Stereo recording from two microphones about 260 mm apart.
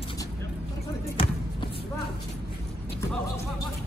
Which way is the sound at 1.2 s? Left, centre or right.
Left.